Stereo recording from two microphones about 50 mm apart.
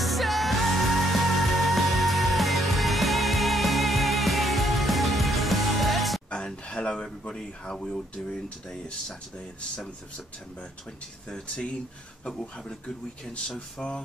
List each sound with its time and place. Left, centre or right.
0.0 s music: centre
6.3 s speech: centre
11.2 s speech: centre
13.7 s speech: centre